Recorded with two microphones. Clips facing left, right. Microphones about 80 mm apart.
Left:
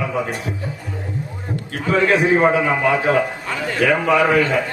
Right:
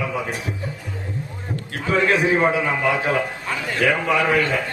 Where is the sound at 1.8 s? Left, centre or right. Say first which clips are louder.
Left 3 dB; centre.